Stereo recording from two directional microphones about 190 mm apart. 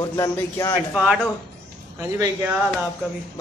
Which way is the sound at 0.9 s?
Centre (ahead or behind).